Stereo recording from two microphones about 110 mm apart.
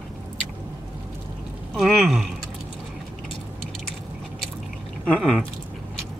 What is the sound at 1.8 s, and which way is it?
Speech, centre (ahead or behind).